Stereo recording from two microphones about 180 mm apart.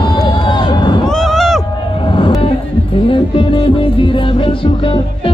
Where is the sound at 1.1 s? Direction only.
Centre (ahead or behind).